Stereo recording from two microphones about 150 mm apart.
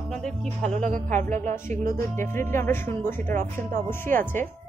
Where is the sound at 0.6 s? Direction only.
50° right (ahead or behind).